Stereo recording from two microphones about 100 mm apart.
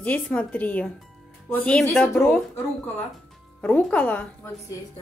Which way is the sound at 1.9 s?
15° left (ahead or behind).